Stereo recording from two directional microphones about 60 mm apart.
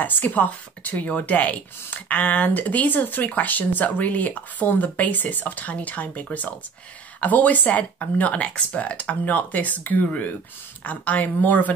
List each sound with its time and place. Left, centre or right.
0.0 s speech: left